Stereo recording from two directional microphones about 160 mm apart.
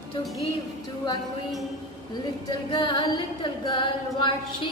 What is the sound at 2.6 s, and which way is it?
Music, 30° left (ahead or behind).